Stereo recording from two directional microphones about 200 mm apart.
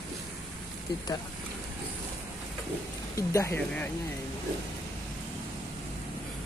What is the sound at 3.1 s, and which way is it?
Speech, 15° left (ahead or behind).